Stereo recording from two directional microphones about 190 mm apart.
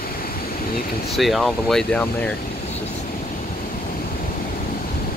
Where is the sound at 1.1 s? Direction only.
Centre (ahead or behind).